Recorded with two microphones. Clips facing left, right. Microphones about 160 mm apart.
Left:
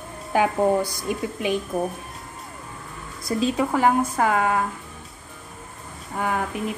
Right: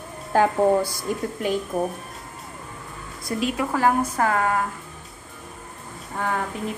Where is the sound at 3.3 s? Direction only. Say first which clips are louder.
Left 2 dB; 25° left (ahead or behind).